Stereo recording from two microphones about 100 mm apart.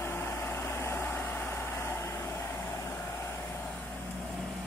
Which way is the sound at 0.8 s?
20° left (ahead or behind).